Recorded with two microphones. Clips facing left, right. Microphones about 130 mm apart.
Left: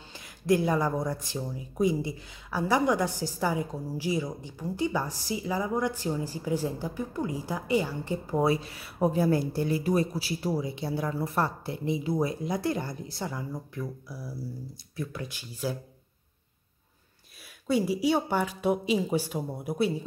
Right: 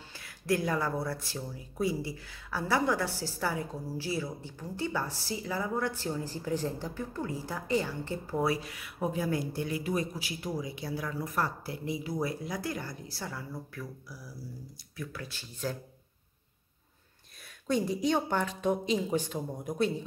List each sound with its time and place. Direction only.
0.1 s speech: 20° left (ahead or behind)
17.6 s speech: 5° left (ahead or behind)